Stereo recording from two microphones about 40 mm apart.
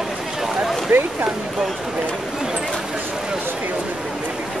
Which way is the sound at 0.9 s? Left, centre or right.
Right.